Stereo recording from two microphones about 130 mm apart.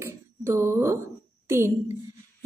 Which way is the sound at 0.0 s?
20° right (ahead or behind).